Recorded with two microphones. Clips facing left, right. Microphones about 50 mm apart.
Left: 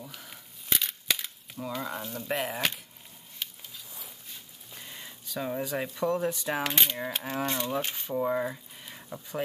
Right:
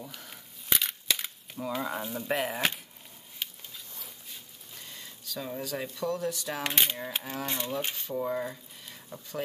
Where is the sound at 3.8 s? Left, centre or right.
Centre.